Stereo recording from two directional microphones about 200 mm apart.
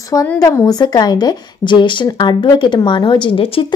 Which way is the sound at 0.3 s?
15° left (ahead or behind).